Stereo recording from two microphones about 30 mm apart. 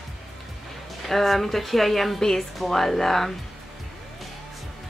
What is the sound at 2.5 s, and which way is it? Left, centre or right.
Speech, centre.